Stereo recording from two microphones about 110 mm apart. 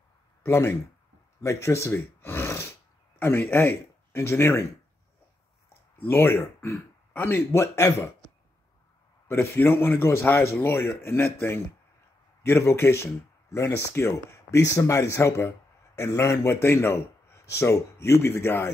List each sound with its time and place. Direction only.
0.4 s speech: 20° left (ahead or behind)
5.9 s speech: 20° left (ahead or behind)
9.3 s speech: 20° left (ahead or behind)